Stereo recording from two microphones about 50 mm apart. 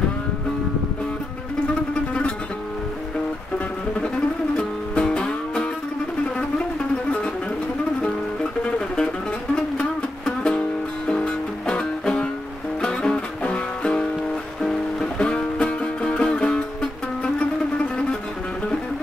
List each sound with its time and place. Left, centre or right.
4.6 s music: left
8.6 s a sound: centre
9.8 s music: left
14.6 s music: centre